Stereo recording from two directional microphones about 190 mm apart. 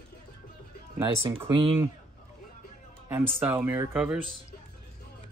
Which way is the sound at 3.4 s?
10° right (ahead or behind).